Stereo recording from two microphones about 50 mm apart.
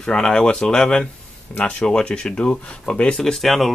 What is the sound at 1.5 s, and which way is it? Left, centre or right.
Speech, left.